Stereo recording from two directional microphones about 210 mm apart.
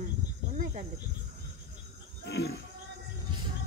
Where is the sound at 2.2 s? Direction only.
50° left (ahead or behind).